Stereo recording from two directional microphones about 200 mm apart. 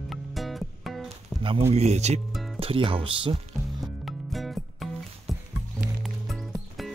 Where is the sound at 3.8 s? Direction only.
Centre (ahead or behind).